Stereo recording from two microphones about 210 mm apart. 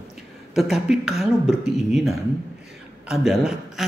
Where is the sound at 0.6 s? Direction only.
Centre (ahead or behind).